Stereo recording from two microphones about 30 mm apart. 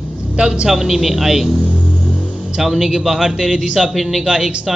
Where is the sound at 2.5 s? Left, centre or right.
Centre.